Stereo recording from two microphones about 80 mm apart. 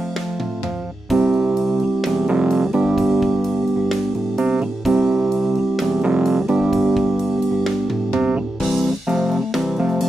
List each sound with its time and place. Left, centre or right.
1.1 s music: centre
4.8 s keyboard: centre
6.0 s music: centre